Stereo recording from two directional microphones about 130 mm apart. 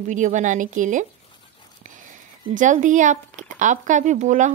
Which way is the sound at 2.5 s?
75° right (ahead or behind).